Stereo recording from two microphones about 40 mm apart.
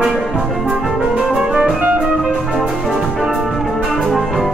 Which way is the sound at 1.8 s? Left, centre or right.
Right.